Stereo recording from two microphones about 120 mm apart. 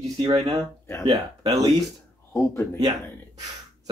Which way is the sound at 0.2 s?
40° right (ahead or behind).